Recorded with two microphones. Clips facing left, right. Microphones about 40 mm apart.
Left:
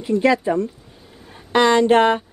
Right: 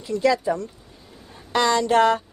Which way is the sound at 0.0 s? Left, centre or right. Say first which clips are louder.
Left 3 dB; left.